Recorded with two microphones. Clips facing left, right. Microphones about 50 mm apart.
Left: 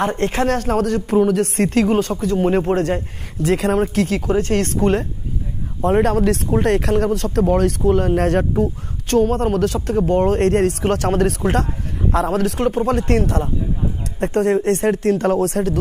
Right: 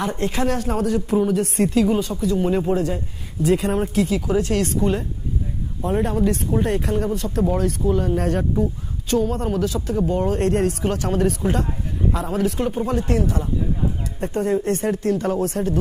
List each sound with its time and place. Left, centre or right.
0.0 s a woman's voice: left
4.3 s a woman's voice: left
6.0 s a woman's voice: left